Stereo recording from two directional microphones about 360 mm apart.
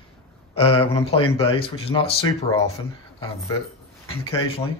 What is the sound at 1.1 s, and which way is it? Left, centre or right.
Speech, left.